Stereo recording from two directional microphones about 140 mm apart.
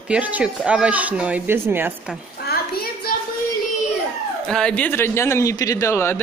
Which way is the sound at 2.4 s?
90° left.